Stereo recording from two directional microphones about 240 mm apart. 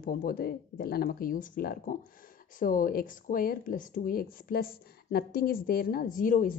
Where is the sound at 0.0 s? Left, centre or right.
Left.